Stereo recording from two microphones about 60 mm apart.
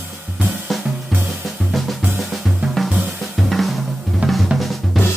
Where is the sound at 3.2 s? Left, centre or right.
Centre.